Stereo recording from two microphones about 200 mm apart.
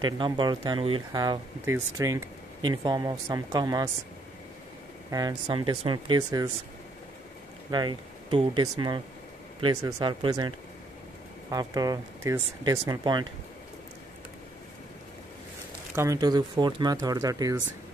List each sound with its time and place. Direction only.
0.0 s speech: 20° right (ahead or behind)
5.1 s speech: 20° right (ahead or behind)
7.7 s speech: 20° right (ahead or behind)
11.5 s speech: 20° right (ahead or behind)
15.9 s speech: 15° right (ahead or behind)